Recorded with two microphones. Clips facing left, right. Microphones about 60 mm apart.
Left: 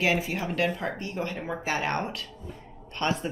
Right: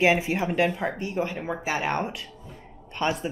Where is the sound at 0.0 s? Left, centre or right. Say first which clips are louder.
Right 5 dB; right.